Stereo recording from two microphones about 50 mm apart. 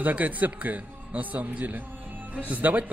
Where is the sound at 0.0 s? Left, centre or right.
Right.